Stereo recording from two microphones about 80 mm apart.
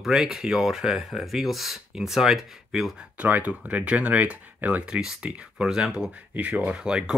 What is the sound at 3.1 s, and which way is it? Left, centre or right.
Speech, right.